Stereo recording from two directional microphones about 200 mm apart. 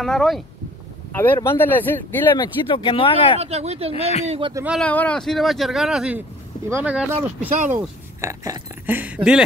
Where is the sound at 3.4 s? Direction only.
30° right (ahead or behind).